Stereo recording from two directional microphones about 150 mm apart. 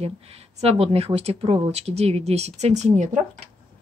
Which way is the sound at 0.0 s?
40° right (ahead or behind).